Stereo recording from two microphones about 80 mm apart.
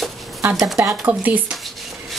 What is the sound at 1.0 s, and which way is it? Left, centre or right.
Speech, centre.